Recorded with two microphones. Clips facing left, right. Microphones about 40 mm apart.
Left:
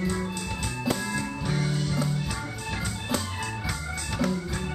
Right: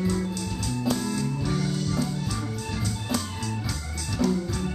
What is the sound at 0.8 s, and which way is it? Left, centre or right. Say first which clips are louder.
Music: right 2 dB; left.